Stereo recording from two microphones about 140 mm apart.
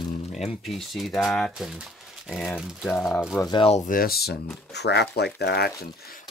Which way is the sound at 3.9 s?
90° left.